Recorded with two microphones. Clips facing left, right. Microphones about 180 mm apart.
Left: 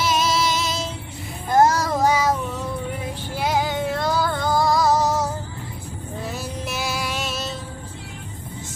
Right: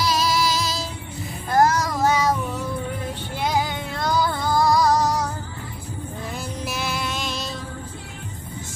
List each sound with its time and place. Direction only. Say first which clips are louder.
0.0 s child singing: even; 20° left (ahead or behind)
2.0 s child singing: left 1 dB; 10° left (ahead or behind)
3.3 s music: left 2 dB; 5° left (ahead or behind)
6.3 s music: right 2 dB; 5° left (ahead or behind)